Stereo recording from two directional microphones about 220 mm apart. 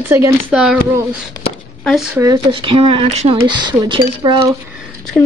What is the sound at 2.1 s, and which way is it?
Speech, 20° right (ahead or behind).